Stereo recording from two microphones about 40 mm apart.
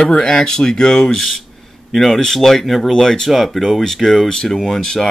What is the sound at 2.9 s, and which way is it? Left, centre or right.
Speech, centre.